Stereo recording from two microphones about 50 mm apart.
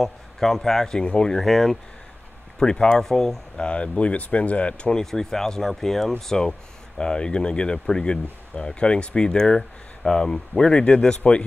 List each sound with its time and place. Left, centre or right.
0.0 s speech: centre
1.4 s speech: centre
2.6 s speech: centre
3.5 s speech: left
5.0 s speech: centre